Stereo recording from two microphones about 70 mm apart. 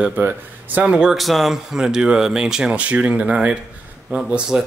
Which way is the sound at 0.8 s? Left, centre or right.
Centre.